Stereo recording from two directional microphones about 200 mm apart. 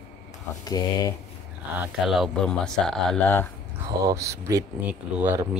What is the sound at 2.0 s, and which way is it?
Speech, centre (ahead or behind).